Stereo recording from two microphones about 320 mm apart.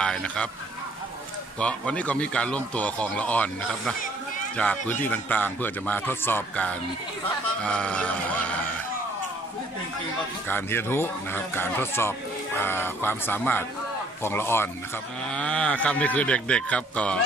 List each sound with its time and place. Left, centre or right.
0.0 s speech: centre
1.6 s speech: centre
10.5 s speech: centre